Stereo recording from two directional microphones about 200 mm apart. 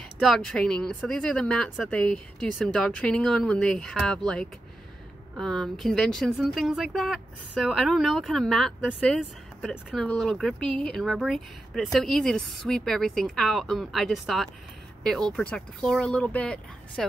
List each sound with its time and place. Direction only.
0.2 s speech: centre (ahead or behind)